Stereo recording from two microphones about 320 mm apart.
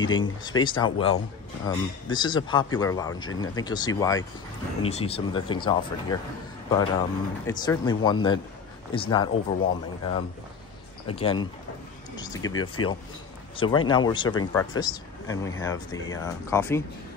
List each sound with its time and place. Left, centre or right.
0.0 s speech: centre
11.1 s speech: centre
13.6 s speech: centre